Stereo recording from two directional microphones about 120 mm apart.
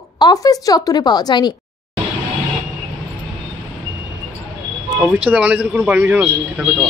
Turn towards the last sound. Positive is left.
turn(degrees=-10)  # may be behind; listen again after turning